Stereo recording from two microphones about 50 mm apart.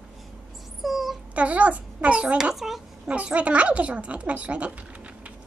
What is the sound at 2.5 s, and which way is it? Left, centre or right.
Speech, centre.